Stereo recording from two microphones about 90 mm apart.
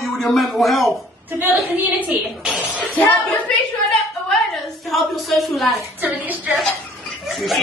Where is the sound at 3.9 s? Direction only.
5° left (ahead or behind).